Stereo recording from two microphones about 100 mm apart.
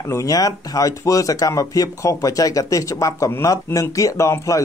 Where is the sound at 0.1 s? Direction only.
35° left (ahead or behind).